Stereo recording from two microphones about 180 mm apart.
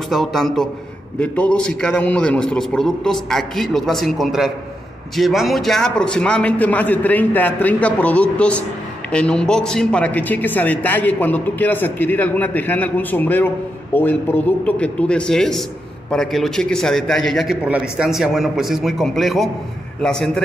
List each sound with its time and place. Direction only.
0.1 s a man's voice: centre (ahead or behind)